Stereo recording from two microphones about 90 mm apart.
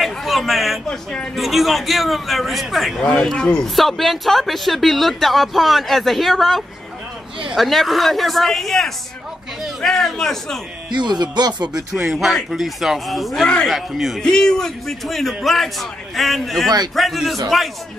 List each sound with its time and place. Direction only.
0.0 s a sound: centre (ahead or behind)
1.1 s a man's voice: centre (ahead or behind)
10.9 s speech: 55° right (ahead or behind)
11.7 s a man's voice: 5° right (ahead or behind)